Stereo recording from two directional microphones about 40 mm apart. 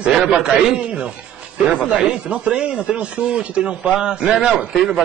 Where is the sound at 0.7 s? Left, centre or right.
Right.